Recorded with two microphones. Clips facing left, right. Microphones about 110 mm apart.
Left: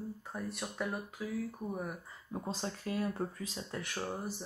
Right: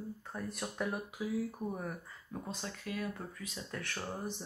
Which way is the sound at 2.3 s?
30° left (ahead or behind).